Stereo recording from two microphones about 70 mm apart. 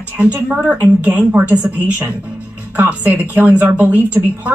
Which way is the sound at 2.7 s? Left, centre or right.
Right.